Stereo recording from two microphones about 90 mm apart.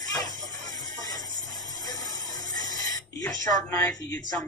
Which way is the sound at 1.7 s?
45° left (ahead or behind).